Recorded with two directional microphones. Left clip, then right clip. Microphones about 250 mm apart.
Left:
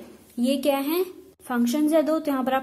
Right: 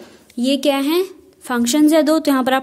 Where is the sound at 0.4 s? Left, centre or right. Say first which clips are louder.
Right 6 dB; right.